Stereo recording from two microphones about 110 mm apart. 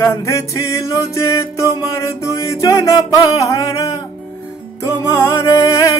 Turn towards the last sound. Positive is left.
turn(degrees=30)  # may be behind; listen again after turning